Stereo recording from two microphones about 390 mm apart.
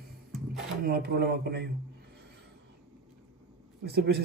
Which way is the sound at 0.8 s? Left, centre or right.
Right.